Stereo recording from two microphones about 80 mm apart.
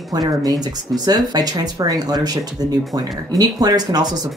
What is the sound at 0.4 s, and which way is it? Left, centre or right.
Speech, right.